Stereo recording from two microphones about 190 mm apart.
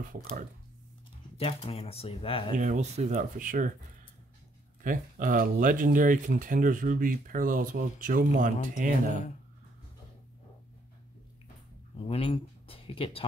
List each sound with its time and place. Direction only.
0.0 s speech: 45° right (ahead or behind)
1.4 s speech: 30° left (ahead or behind)
2.5 s speech: 40° right (ahead or behind)
4.8 s speech: 45° right (ahead or behind)
12.0 s speech: 30° left (ahead or behind)